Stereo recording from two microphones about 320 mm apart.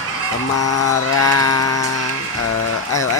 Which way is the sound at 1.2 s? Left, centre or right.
Left.